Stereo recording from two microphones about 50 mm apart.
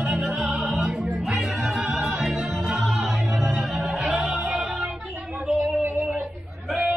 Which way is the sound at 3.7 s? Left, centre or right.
Centre.